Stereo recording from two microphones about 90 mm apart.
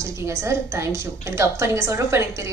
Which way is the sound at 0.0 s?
35° right (ahead or behind).